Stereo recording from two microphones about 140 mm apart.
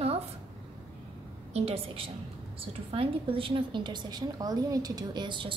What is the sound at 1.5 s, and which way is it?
A woman's voice, 45° right (ahead or behind).